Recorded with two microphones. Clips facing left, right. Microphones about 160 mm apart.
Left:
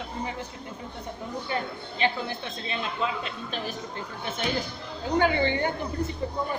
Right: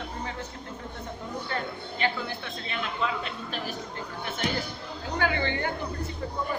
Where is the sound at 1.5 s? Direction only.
15° left (ahead or behind).